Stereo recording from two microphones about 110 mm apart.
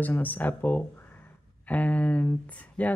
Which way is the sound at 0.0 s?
15° left (ahead or behind).